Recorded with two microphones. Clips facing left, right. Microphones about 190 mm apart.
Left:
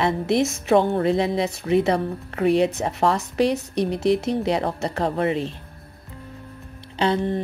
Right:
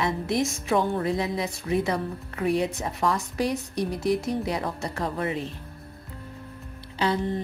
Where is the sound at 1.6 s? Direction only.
65° left (ahead or behind).